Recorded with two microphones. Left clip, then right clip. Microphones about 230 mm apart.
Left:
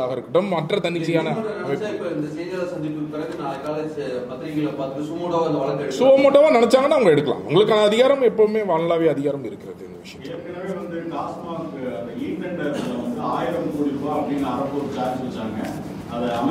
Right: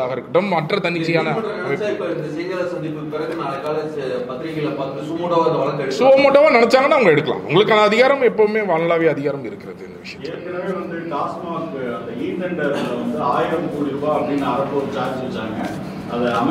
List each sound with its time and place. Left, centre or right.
0.0 s speech: left
5.9 s speech: left